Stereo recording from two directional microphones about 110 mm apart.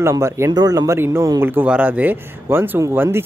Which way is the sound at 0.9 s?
20° right (ahead or behind).